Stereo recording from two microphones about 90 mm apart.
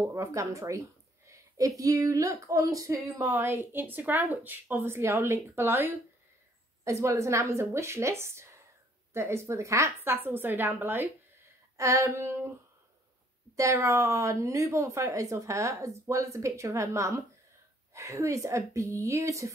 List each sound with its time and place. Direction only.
0.1 s a woman's voice: 35° right (ahead or behind)
6.8 s a woman's voice: 35° right (ahead or behind)
11.7 s speech: 35° right (ahead or behind)
13.6 s a woman's voice: 35° right (ahead or behind)